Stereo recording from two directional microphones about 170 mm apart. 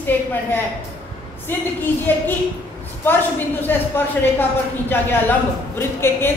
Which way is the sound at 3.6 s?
10° left (ahead or behind).